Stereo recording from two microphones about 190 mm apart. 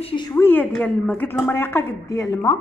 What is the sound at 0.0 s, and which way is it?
Speech, 25° left (ahead or behind).